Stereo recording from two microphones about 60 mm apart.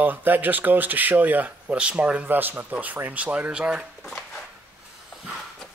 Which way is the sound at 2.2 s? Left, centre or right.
Right.